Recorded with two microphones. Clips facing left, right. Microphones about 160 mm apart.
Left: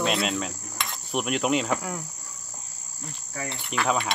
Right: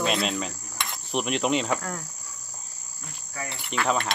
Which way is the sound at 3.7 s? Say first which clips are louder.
Even; 5° left (ahead or behind).